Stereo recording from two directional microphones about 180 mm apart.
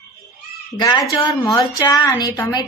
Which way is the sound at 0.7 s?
20° left (ahead or behind).